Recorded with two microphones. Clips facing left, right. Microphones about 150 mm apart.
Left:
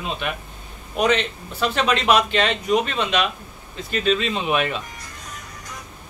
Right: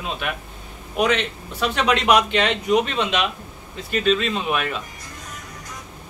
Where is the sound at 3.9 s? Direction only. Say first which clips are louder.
Right 1 dB; centre (ahead or behind).